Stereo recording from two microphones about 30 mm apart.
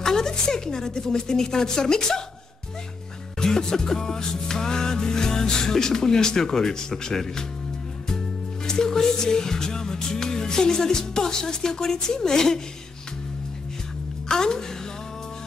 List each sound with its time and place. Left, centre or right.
0.0 s music: centre
3.3 s music: left
8.6 s music: centre
14.3 s a woman's voice: centre